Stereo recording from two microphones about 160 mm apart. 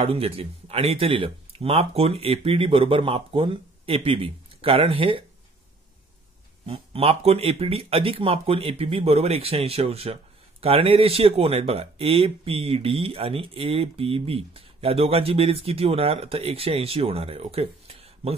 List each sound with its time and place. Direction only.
0.0 s speech: 35° right (ahead or behind)
6.6 s speech: 35° right (ahead or behind)